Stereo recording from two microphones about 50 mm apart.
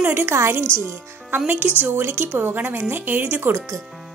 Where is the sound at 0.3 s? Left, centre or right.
Right.